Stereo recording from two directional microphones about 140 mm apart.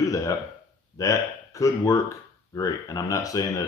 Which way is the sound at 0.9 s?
25° left (ahead or behind).